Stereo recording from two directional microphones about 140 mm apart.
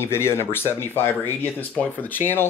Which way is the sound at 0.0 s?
15° left (ahead or behind).